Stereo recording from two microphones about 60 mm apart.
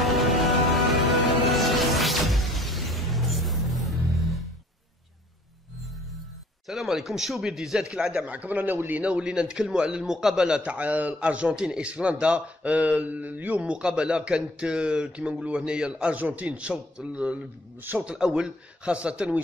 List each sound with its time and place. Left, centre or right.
0.0 s music: centre
6.7 s a man's voice: centre
8.3 s a man's voice: right